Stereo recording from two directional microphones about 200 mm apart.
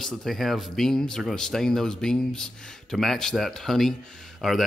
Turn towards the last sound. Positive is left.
turn(degrees=0)  # may be behind; listen again after turning